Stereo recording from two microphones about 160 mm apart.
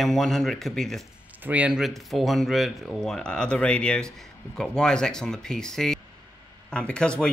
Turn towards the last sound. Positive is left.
turn(degrees=5)  # may be behind; listen again after turning